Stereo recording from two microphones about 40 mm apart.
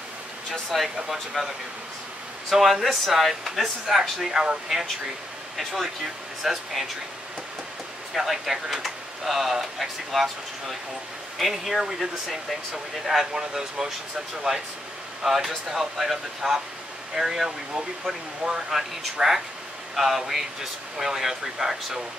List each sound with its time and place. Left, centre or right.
1.0 s speech: centre
2.5 s speech: centre
5.6 s speech: centre
8.1 s speech: centre
13.3 s speech: centre
15.2 s speech: centre
18.7 s speech: centre